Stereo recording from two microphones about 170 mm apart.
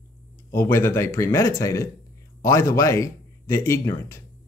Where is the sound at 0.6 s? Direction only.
15° left (ahead or behind).